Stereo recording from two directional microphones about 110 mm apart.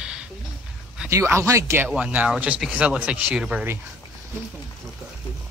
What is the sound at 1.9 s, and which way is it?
Speech, 10° right (ahead or behind).